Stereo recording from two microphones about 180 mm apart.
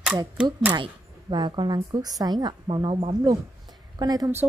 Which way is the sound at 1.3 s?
25° right (ahead or behind).